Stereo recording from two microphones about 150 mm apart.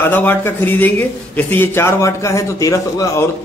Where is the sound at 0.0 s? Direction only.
15° left (ahead or behind).